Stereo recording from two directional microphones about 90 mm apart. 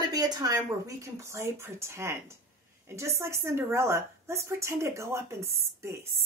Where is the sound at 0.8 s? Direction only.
35° right (ahead or behind).